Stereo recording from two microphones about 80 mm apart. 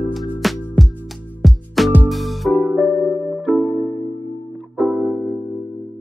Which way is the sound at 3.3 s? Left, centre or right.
Centre.